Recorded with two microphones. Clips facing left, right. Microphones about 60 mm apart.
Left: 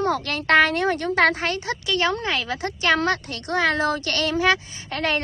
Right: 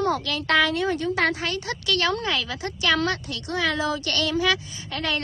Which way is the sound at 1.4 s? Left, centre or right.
Left.